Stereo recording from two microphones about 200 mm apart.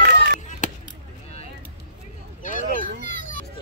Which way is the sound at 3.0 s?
40° left (ahead or behind).